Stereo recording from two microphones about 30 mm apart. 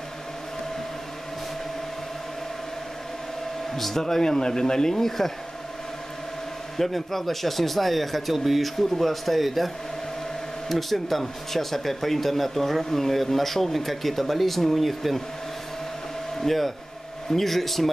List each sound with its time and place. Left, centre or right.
3.7 s speech: centre
6.8 s speech: centre
10.7 s speech: centre
16.3 s speech: centre